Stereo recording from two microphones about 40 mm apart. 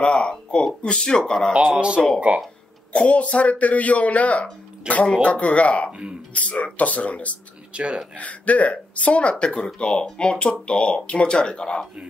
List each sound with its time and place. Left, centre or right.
0.0 s speech: left
2.1 s speech: right
2.9 s a man's voice: left
5.9 s speech: right
6.3 s a man's voice: left
7.7 s speech: right
8.2 s a man's voice: left